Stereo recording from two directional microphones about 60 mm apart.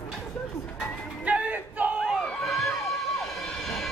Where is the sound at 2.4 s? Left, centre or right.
Centre.